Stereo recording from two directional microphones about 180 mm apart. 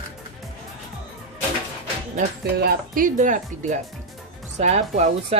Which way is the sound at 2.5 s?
60° right (ahead or behind).